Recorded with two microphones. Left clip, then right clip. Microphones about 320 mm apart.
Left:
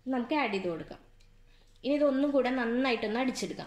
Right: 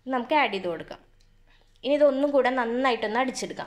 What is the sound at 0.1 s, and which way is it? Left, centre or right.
Speech, right.